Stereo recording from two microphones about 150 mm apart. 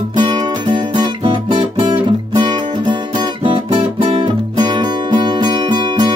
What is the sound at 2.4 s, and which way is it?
Music, 30° right (ahead or behind).